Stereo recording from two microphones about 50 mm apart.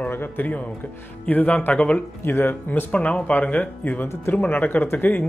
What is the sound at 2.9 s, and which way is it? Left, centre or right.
Speech, left.